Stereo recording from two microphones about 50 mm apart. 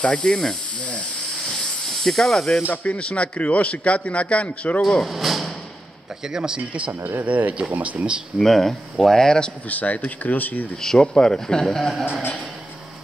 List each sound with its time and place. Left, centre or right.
0.0 s speech: centre
1.9 s speech: centre
2.7 s a man's voice: left
5.0 s speech: centre
6.2 s speech: centre
6.6 s speech: right
6.9 s speech: right
7.2 s speech: right
8.4 s speech: centre
9.7 s speech: left
11.0 s speech: centre